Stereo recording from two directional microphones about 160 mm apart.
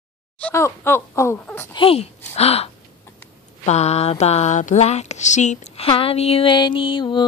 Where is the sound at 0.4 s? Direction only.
15° left (ahead or behind).